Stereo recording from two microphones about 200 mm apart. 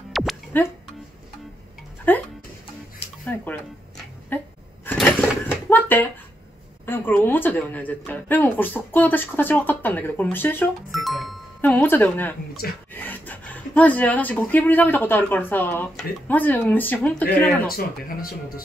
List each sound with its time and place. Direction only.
0.1 s music: centre (ahead or behind)
2.1 s music: 10° left (ahead or behind)
3.3 s a sound: 10° left (ahead or behind)
6.9 s speech: 10° left (ahead or behind)
17.7 s speech: 45° left (ahead or behind)